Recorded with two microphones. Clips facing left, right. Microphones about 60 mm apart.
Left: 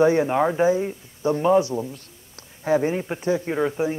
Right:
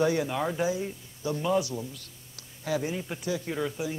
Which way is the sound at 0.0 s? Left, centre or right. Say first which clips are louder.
Left 8 dB; left.